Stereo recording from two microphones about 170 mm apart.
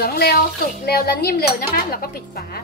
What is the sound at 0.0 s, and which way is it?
Speech, 65° left (ahead or behind).